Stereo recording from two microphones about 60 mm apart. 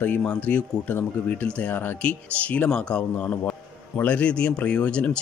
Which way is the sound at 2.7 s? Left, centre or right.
Centre.